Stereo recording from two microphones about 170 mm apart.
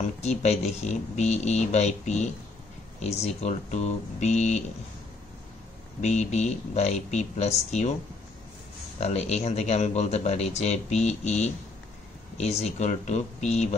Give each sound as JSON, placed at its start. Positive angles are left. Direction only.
{"t": 0.0, "sound": "speech", "side_deg": 40}
{"t": 5.9, "sound": "speech", "side_deg": 40}
{"t": 9.0, "sound": "speech", "side_deg": 40}